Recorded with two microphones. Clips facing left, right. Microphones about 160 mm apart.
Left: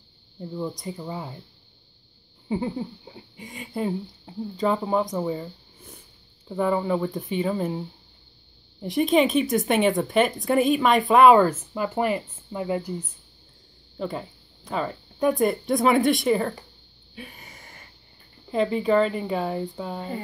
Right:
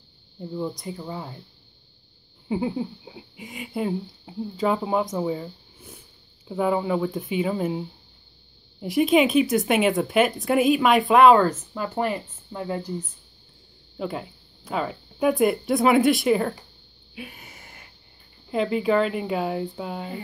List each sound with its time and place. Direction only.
0.4 s speech: centre (ahead or behind)
2.4 s speech: 5° right (ahead or behind)
8.8 s speech: 5° right (ahead or behind)
13.9 s speech: 5° right (ahead or behind)
17.1 s a sound: 5° right (ahead or behind)
18.5 s speech: 5° right (ahead or behind)